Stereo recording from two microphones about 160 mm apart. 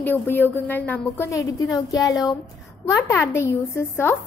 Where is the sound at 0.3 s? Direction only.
10° left (ahead or behind).